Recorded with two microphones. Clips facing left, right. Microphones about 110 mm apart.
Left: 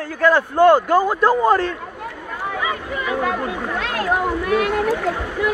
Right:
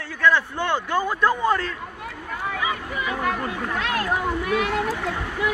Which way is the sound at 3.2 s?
15° left (ahead or behind).